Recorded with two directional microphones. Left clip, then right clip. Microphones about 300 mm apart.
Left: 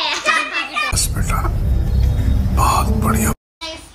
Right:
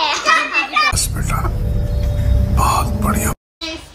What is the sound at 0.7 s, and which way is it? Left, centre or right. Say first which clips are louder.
Music: right 4 dB; centre.